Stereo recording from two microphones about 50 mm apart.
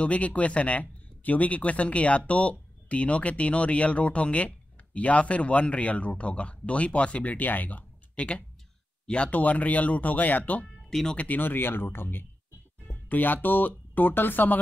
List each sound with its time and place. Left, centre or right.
0.0 s speech: left
9.0 s speech: left
10.9 s speech: centre
11.1 s speech: left